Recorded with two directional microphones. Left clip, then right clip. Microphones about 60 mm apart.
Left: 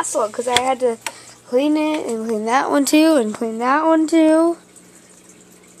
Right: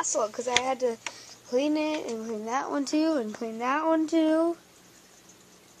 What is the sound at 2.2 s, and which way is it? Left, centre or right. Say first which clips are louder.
Speech: left 12 dB; left.